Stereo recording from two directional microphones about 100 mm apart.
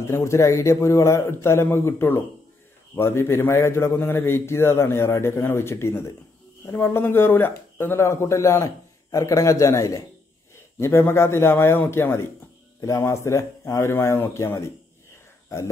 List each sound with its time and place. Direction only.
0.0 s speech: 30° left (ahead or behind)